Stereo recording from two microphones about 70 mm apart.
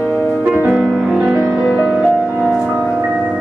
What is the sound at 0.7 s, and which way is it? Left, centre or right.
Music, centre.